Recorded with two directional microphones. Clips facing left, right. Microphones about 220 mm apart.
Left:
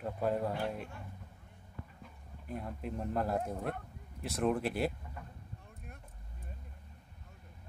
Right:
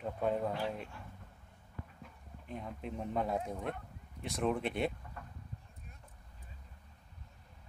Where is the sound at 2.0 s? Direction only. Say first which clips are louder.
Left 2 dB; 5° left (ahead or behind).